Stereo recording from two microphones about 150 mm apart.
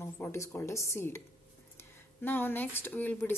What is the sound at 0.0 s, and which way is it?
Speech, 15° left (ahead or behind).